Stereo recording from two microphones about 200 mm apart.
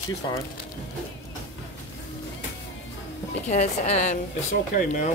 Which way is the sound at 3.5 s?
35° left (ahead or behind).